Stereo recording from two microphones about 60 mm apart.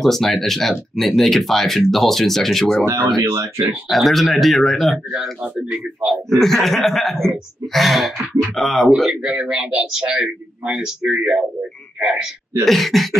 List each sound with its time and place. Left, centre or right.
0.0 s speech: centre
2.8 s speech: right
3.9 s speech: centre
6.3 s speech: centre
9.2 s speech: centre
12.6 s speech: centre